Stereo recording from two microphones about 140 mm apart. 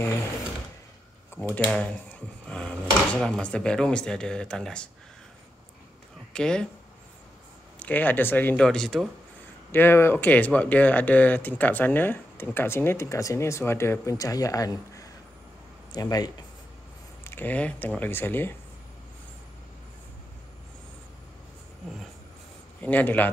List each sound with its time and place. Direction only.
1.3 s speech: 10° left (ahead or behind)
6.3 s speech: 5° left (ahead or behind)
7.8 s speech: 10° left (ahead or behind)
9.7 s speech: 15° left (ahead or behind)
17.2 s speech: 15° left (ahead or behind)
22.8 s speech: 10° left (ahead or behind)